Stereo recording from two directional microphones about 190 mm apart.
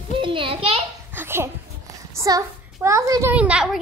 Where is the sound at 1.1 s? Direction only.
10° right (ahead or behind).